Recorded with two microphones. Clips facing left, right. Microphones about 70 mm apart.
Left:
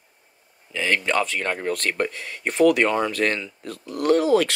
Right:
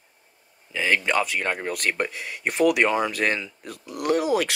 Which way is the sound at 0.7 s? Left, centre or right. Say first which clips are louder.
Even; centre.